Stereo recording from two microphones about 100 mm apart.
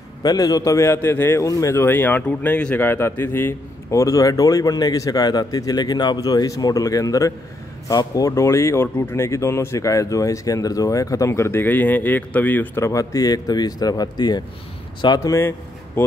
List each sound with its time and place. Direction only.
0.2 s a man's voice: 40° left (ahead or behind)
15.1 s a man's voice: 35° left (ahead or behind)